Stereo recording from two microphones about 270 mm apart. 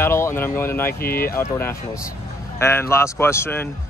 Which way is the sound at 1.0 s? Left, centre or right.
Left.